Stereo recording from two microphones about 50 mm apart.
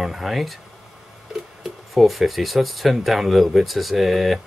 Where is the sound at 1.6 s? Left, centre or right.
Centre.